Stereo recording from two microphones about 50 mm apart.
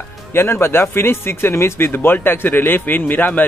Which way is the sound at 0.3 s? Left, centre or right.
Left.